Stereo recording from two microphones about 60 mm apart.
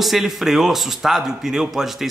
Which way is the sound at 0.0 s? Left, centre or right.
Centre.